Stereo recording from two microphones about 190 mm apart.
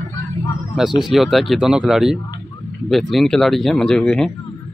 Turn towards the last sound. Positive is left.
turn(degrees=5)  # may be behind; listen again after turning